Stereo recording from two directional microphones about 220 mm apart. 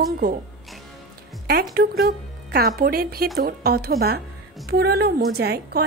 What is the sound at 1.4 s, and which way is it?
A woman's voice, 45° right (ahead or behind).